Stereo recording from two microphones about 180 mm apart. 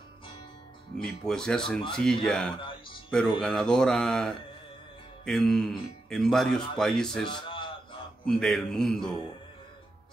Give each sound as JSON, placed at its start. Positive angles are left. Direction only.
{"t": 1.2, "sound": "speech", "side_deg": 5}
{"t": 2.6, "sound": "music", "side_deg": 25}
{"t": 3.1, "sound": "speech", "side_deg": 5}
{"t": 7.2, "sound": "a sound", "side_deg": 25}
{"t": 8.3, "sound": "speech", "side_deg": 5}